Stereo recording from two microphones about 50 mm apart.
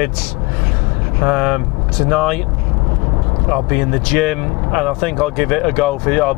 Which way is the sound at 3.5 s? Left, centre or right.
Centre.